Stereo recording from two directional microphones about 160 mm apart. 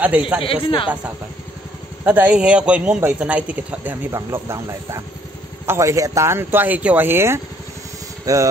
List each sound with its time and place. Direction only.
0.0 s a man's voice: 10° right (ahead or behind)
0.4 s speech: 35° left (ahead or behind)
2.0 s a man's voice: 10° right (ahead or behind)